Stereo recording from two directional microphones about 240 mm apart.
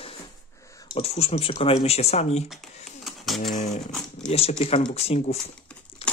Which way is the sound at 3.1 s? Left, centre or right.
Centre.